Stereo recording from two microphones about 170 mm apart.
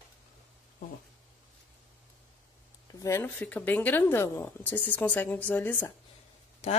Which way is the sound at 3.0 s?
15° left (ahead or behind).